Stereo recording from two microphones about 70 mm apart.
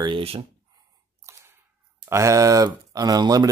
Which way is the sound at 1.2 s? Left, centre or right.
Right.